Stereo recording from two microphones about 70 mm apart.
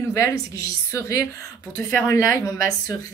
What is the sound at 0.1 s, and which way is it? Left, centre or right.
A woman's voice, left.